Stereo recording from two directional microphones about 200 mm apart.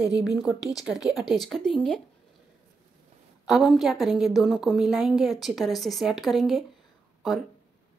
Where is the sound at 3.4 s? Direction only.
Centre (ahead or behind).